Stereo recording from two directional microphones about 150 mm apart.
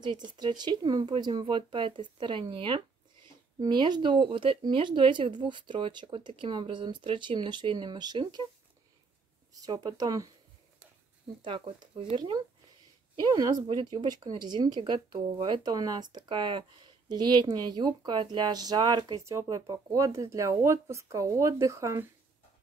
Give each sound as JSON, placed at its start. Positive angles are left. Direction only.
{"t": 0.0, "sound": "speech", "side_deg": -30}
{"t": 9.5, "sound": "speech", "side_deg": -25}
{"t": 11.4, "sound": "speech", "side_deg": -35}